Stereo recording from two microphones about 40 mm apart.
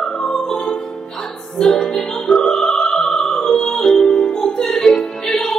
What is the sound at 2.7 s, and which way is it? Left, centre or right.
Opera, centre.